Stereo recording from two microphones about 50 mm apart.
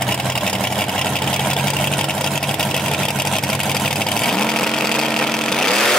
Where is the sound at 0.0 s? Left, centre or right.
Centre.